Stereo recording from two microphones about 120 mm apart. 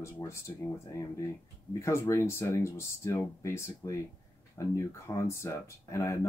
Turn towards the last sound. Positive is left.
turn(degrees=25)  # may be behind; listen again after turning